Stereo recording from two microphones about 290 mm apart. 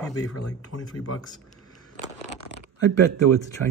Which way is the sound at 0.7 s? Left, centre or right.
Left.